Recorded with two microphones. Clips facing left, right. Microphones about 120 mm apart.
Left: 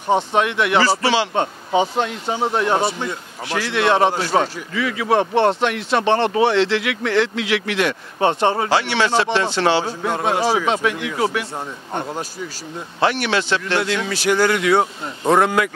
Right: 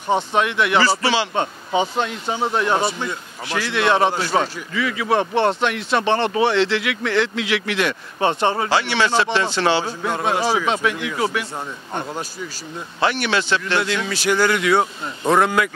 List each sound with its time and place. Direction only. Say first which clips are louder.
0.4 s speech: right 2 dB; 45° left (ahead or behind)
5.2 s speech: left 2 dB; 30° left (ahead or behind)
5.6 s speech: left 1 dB; 50° left (ahead or behind)
11.5 s a man's voice: left 1 dB; 30° left (ahead or behind)
13.0 s speech: left 1 dB; 50° left (ahead or behind)